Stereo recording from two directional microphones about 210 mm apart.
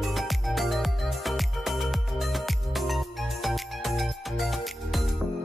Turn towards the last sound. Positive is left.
turn(degrees=0)  # may be behind; listen again after turning